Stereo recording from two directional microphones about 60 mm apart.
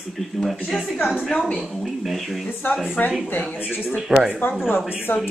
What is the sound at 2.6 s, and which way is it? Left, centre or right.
Speech, left.